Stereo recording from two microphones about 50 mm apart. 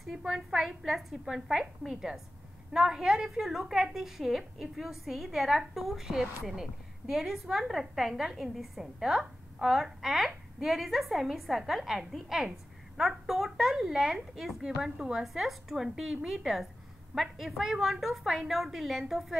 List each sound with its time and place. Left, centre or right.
0.1 s a woman's voice: centre